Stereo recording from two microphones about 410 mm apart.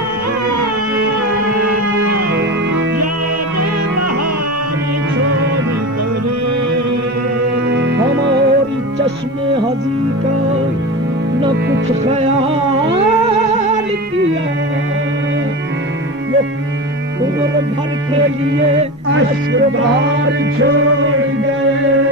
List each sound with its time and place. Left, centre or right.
7.7 s music: right
12.0 s music: centre